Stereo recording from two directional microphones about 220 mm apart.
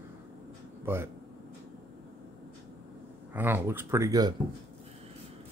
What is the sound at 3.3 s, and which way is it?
Speech, 10° right (ahead or behind).